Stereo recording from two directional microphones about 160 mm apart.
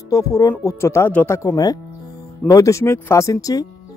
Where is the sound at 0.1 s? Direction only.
20° left (ahead or behind).